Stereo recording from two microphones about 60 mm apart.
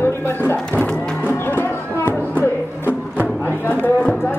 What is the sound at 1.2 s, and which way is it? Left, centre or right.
Music, left.